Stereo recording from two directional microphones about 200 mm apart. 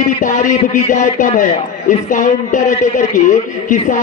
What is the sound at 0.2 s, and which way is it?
A man's voice, 40° left (ahead or behind).